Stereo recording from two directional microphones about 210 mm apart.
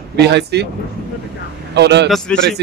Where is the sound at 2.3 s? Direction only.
5° left (ahead or behind).